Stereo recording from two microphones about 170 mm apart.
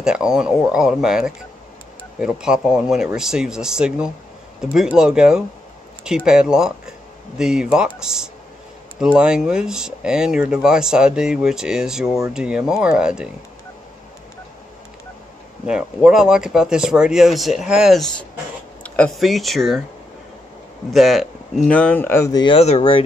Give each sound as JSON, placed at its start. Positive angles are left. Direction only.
{"t": 0.0, "sound": "speech", "side_deg": -5}
{"t": 15.6, "sound": "speech", "side_deg": -5}
{"t": 20.9, "sound": "speech", "side_deg": 0}
{"t": 22.6, "sound": "speech", "side_deg": 35}